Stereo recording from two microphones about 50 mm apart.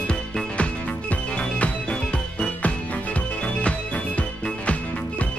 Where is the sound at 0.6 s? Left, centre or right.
Left.